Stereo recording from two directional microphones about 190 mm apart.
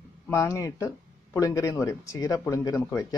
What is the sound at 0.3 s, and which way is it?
Speech, 15° left (ahead or behind).